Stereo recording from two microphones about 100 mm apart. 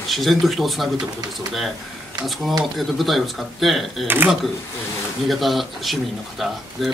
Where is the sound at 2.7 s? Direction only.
Centre (ahead or behind).